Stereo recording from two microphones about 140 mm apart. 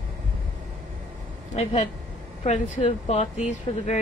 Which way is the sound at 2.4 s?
50° left (ahead or behind).